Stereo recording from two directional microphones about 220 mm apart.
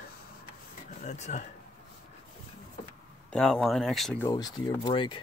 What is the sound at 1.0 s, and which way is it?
Speech, 30° left (ahead or behind).